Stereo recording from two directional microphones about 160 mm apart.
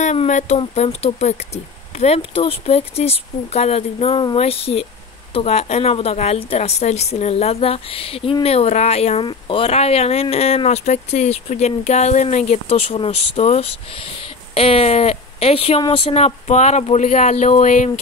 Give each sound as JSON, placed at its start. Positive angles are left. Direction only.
{"t": 0.0, "sound": "a woman's voice", "side_deg": 45}